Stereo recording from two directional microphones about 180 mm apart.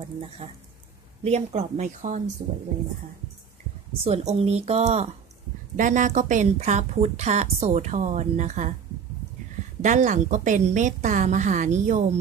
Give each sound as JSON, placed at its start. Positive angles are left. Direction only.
{"t": 1.2, "sound": "speech", "side_deg": -35}
{"t": 4.0, "sound": "speech", "side_deg": -35}
{"t": 9.8, "sound": "a woman's voice", "side_deg": -45}